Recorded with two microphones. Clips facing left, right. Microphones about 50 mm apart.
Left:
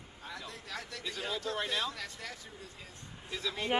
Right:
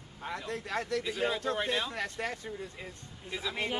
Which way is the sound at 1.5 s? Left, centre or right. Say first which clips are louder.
Right 3 dB; right.